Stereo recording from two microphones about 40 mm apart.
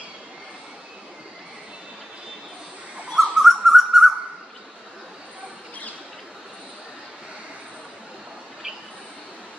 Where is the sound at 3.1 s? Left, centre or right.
Centre.